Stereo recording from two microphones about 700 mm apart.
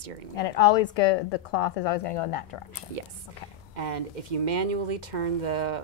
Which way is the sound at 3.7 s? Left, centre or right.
Right.